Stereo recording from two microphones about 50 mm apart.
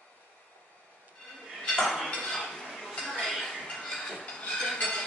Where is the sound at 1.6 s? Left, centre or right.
Centre.